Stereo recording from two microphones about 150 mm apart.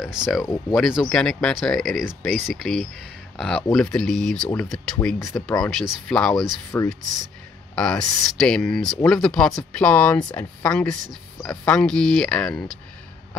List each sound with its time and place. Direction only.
0.0 s speech: 5° right (ahead or behind)
0.4 s speech: 20° left (ahead or behind)
0.7 s speech: 5° right (ahead or behind)